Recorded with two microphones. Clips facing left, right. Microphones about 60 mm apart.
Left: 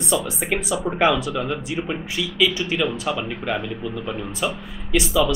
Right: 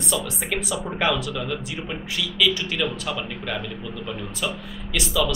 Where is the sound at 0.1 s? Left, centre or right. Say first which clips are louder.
Left 4 dB; centre.